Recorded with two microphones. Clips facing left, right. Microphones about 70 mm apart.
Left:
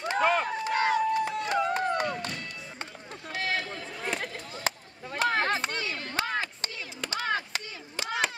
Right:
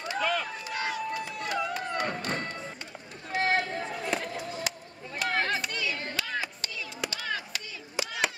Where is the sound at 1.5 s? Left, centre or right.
Left.